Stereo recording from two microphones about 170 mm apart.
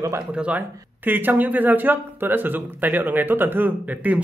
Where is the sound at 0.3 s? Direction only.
10° right (ahead or behind).